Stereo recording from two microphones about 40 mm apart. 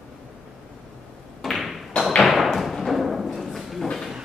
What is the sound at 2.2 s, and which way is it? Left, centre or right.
Thump, centre.